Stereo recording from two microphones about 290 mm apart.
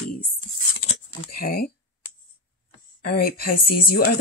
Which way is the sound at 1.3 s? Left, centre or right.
Left.